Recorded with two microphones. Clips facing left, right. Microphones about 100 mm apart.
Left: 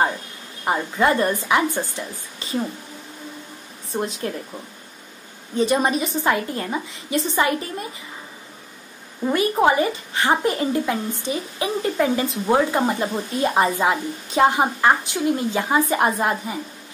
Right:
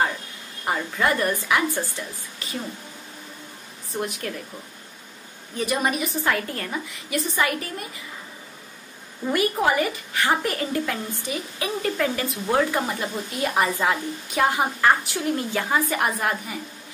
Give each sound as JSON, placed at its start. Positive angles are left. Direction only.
{"t": 0.7, "sound": "speech", "side_deg": 20}
{"t": 3.9, "sound": "speech", "side_deg": 25}
{"t": 5.6, "sound": "speech", "side_deg": 25}
{"t": 9.3, "sound": "speech", "side_deg": 25}